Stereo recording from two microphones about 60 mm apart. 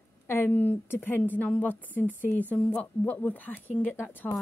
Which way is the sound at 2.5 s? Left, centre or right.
Left.